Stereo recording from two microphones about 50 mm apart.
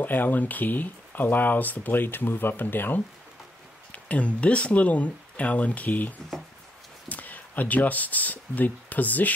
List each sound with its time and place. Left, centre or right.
0.0 s speech: left
3.9 s speech: left